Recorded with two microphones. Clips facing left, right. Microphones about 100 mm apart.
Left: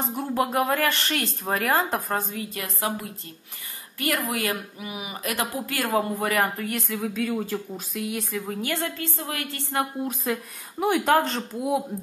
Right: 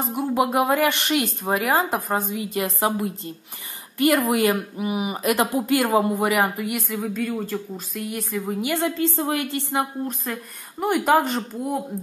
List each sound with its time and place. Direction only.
0.0 s speech: 10° right (ahead or behind)
4.3 s speech: 20° right (ahead or behind)
9.8 s a woman's voice: centre (ahead or behind)